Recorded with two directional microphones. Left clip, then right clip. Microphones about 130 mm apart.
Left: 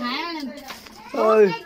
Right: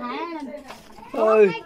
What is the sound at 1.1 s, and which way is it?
Speech, 5° right (ahead or behind).